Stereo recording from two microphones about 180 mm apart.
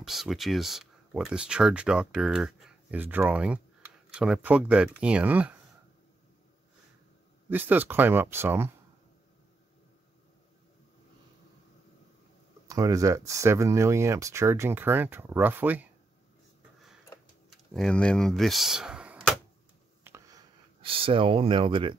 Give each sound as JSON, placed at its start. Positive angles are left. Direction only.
{"t": 0.0, "sound": "speech", "side_deg": 0}
{"t": 7.4, "sound": "speech", "side_deg": -10}
{"t": 12.6, "sound": "speech", "side_deg": -20}
{"t": 17.5, "sound": "speech", "side_deg": 0}
{"t": 20.0, "sound": "a sound", "side_deg": -15}
{"t": 20.8, "sound": "speech", "side_deg": -30}